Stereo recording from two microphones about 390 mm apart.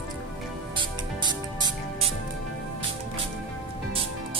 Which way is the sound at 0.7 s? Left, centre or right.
Centre.